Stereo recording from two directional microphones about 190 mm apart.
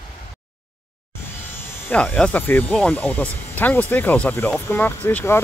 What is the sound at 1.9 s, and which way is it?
Speech, 5° left (ahead or behind).